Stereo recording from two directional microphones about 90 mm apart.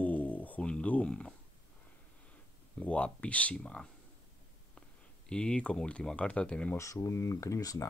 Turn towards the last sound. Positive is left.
turn(degrees=40)  # may be behind; listen again after turning